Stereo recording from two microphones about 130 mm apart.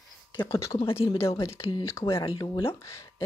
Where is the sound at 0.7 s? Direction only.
45° left (ahead or behind).